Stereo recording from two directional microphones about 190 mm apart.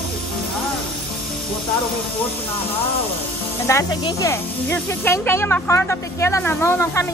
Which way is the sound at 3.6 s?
15° left (ahead or behind).